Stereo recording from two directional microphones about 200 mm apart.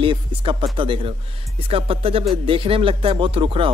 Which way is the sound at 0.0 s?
25° right (ahead or behind).